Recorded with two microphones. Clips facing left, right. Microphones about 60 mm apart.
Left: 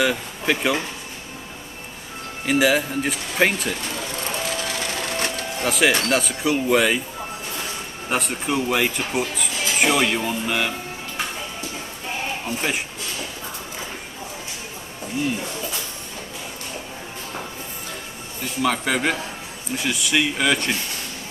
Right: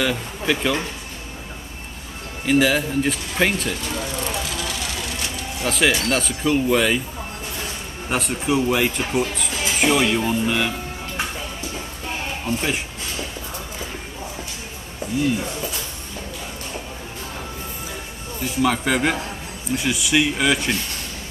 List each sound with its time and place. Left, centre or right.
0.0 s speech: centre
2.4 s speech: centre
5.0 s music: left
5.7 s speech: centre
8.1 s speech: centre
12.4 s speech: centre
18.4 s speech: centre